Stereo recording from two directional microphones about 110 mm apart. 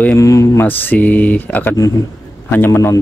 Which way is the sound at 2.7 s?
25° left (ahead or behind).